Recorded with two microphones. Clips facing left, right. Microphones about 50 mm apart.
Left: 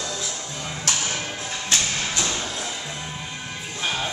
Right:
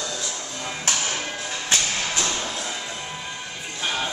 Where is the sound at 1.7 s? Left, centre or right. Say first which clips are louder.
Even; right.